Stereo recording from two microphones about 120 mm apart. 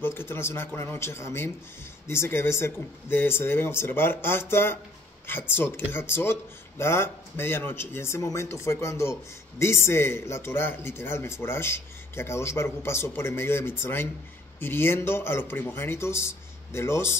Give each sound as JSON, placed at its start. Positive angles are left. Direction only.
{"t": 0.0, "sound": "a man's voice", "side_deg": 20}